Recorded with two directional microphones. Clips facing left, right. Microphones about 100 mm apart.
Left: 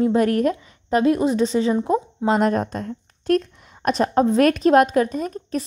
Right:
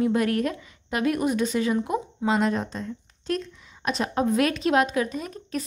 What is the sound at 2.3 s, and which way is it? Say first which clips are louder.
A woman's voice: left 5 dB; 45° left (ahead or behind).